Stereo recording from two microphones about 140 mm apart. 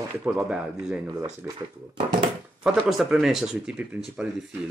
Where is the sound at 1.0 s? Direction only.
15° right (ahead or behind).